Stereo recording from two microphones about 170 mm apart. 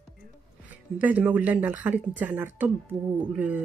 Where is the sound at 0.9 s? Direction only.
10° right (ahead or behind).